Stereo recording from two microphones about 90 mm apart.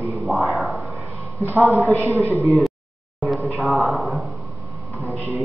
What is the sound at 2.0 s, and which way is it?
Speech, 30° right (ahead or behind).